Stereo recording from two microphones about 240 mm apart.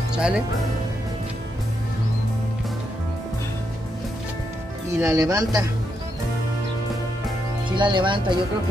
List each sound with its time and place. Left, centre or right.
0.1 s speech: centre
4.9 s speech: centre
7.7 s speech: centre